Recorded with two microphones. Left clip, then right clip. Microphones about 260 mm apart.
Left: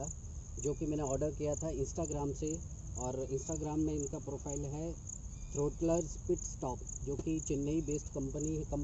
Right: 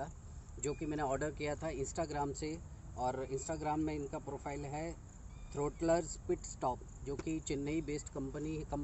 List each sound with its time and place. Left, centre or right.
0.7 s cricket: right
3.0 s speech: centre
3.4 s cricket: right
5.5 s speech: right
6.0 s cricket: right